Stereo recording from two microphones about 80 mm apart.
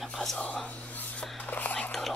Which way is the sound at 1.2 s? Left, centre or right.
Left.